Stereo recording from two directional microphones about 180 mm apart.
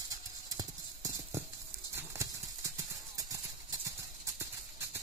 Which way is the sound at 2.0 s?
15° right (ahead or behind).